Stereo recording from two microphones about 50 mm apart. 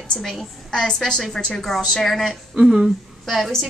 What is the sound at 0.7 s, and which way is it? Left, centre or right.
A woman's voice, centre.